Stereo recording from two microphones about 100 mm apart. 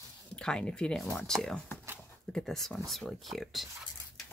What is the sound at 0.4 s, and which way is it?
Speech, 10° left (ahead or behind).